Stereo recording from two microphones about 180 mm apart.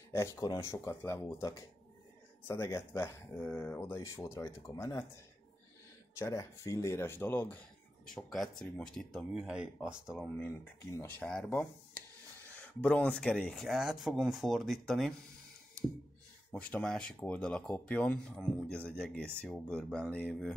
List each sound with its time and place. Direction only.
0.1 s speech: 15° left (ahead or behind)
16.5 s speech: 5° left (ahead or behind)